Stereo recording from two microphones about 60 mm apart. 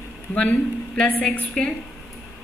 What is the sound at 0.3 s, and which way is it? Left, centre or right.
A woman's voice, centre.